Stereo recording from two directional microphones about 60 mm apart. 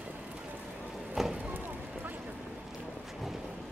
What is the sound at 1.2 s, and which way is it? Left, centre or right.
Vehicle, centre.